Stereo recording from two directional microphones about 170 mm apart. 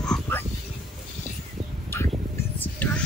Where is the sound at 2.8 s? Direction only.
10° left (ahead or behind).